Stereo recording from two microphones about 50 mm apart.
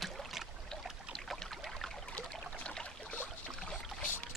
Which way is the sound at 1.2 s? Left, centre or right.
Centre.